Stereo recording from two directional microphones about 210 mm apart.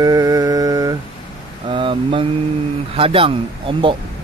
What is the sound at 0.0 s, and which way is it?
Mantra, 15° right (ahead or behind).